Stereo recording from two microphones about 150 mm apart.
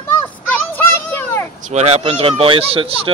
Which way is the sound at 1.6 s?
45° right (ahead or behind).